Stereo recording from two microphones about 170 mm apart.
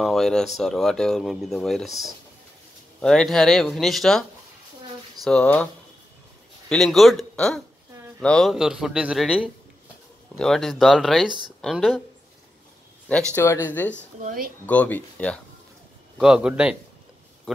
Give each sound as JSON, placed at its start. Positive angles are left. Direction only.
{"t": 0.0, "sound": "speech", "side_deg": 0}
{"t": 6.7, "sound": "speech", "side_deg": 0}
{"t": 13.3, "sound": "speech", "side_deg": 15}
{"t": 14.2, "sound": "speech", "side_deg": -55}
{"t": 14.7, "sound": "speech", "side_deg": 10}
{"t": 16.2, "sound": "speech", "side_deg": -5}